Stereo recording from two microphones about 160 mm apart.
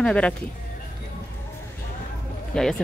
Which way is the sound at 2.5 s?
5° left (ahead or behind).